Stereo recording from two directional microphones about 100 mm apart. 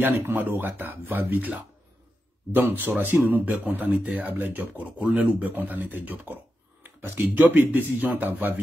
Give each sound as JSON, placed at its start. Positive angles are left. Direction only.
{"t": 0.0, "sound": "speech", "side_deg": -20}